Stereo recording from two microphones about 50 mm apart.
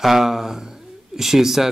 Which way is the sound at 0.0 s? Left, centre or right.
Centre.